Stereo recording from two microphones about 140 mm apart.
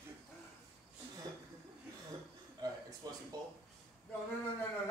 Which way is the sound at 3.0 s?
25° right (ahead or behind).